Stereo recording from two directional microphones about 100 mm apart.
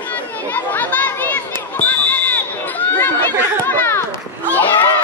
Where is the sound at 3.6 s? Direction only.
25° left (ahead or behind).